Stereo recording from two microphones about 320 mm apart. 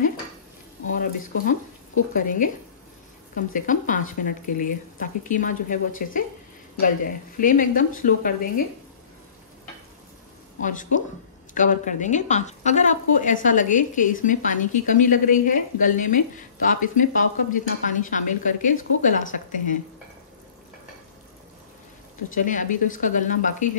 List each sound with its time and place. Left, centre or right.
0.9 s speech: left
7.3 s speech: left
10.6 s speech: left
22.3 s speech: left